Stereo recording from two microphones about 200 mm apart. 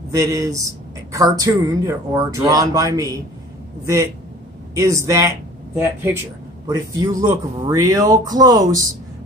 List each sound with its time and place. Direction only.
0.1 s speech: 15° right (ahead or behind)